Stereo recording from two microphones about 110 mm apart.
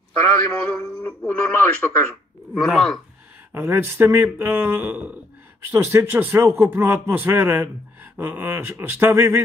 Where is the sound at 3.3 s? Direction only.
20° right (ahead or behind).